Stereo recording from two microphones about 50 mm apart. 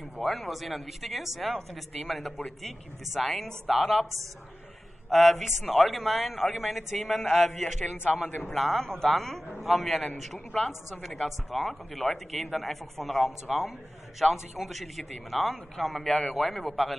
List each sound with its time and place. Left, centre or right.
0.2 s a man's voice: centre
5.1 s a man's voice: centre
8.0 s a man's voice: left
8.5 s a man's voice: centre
9.8 s a man's voice: left
10.1 s a man's voice: centre